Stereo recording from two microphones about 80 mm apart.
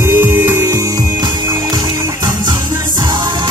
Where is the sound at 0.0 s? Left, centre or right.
Right.